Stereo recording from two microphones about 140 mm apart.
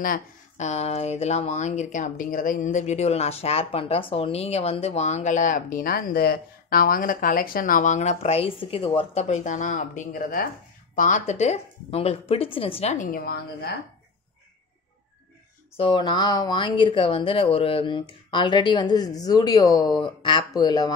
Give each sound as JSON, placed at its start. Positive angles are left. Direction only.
{"t": 0.0, "sound": "speech", "side_deg": 90}
{"t": 0.7, "sound": "speech", "side_deg": 50}
{"t": 11.0, "sound": "a woman's voice", "side_deg": 65}
{"t": 12.9, "sound": "a woman's voice", "side_deg": 80}
{"t": 15.8, "sound": "speech", "side_deg": 35}